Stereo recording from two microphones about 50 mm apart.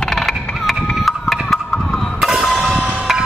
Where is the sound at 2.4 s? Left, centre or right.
Centre.